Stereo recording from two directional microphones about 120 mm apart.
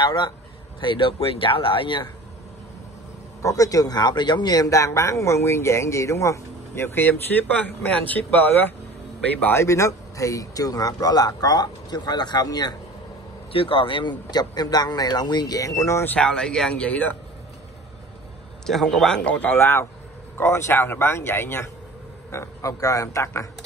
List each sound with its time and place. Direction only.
0.0 s speech: 40° left (ahead or behind)
3.4 s a man's voice: 30° left (ahead or behind)
13.5 s speech: 50° left (ahead or behind); by 15.7 s 30° left (ahead or behind)
15.8 s speech: 20° left (ahead or behind)
16.2 s a man's voice: 5° left (ahead or behind)
18.7 s a man's voice: centre (ahead or behind); by 23.5 s 25° left (ahead or behind)